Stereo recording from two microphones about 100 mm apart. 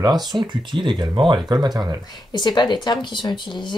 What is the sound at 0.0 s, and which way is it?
Speech, 40° right (ahead or behind).